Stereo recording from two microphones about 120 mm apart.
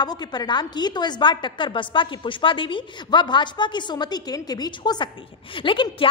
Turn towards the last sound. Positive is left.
turn(degrees=45)  # may be behind; listen again after turning